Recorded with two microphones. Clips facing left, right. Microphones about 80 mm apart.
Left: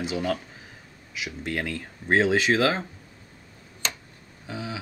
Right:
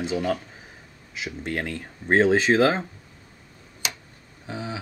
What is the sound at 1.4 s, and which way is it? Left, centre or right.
Speech, centre.